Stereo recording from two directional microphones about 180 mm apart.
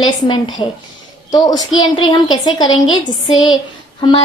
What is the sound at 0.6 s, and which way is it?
A woman's voice, 25° left (ahead or behind).